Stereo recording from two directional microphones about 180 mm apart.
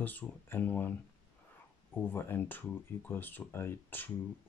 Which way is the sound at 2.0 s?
10° left (ahead or behind).